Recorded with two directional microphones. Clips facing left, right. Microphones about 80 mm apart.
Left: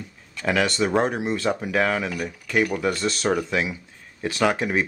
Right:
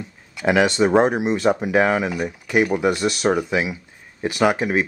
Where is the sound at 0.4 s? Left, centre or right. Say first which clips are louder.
Right 5 dB; centre.